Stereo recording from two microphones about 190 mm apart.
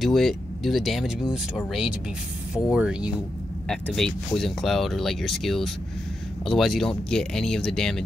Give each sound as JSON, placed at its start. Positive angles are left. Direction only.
{"t": 0.0, "sound": "speech", "side_deg": 0}